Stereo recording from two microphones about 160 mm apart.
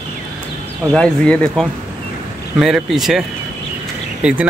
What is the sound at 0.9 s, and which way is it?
Speech, 5° left (ahead or behind).